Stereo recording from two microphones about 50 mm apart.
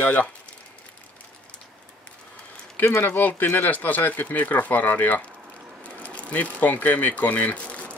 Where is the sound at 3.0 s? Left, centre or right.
Left.